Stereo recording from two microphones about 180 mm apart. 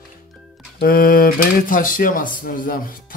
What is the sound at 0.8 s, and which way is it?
Speech, 55° left (ahead or behind).